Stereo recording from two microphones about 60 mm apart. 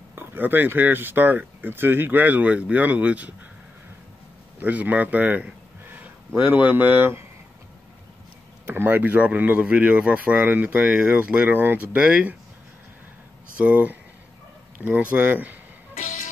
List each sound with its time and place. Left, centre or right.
0.1 s speech: right
4.6 s speech: right
8.6 s speech: right
13.6 s speech: right